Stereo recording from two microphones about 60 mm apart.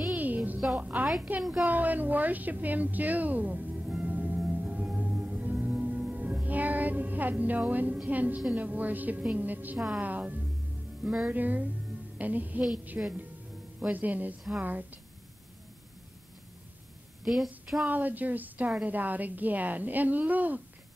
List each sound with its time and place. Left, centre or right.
0.1 s music: right
1.4 s a woman's voice: centre
1.7 s a woman's voice: right
4.5 s music: right
8.1 s a woman's voice: right
11.1 s a woman's voice: centre
11.3 s a woman's voice: right
17.2 s a woman's voice: centre
17.8 s a woman's voice: right